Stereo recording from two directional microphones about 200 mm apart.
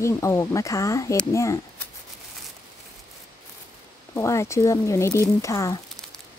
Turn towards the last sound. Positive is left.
turn(degrees=15)  # may be behind; listen again after turning